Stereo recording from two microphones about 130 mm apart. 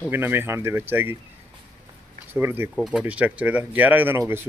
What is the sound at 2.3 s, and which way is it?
Speech, 15° right (ahead or behind).